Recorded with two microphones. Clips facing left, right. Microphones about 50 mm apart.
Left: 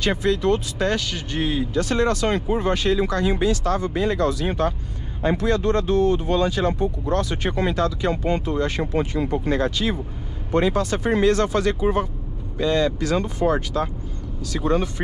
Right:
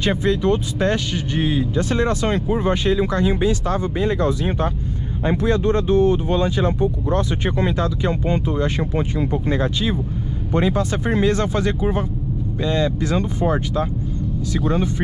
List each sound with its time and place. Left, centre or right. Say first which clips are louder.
0.2 s speech: right 1 dB; right